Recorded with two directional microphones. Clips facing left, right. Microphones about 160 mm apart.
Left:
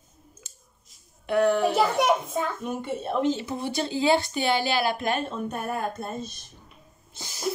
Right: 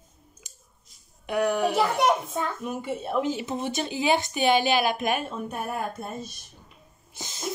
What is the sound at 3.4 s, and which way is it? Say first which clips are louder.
A woman's voice: even; 20° right (ahead or behind).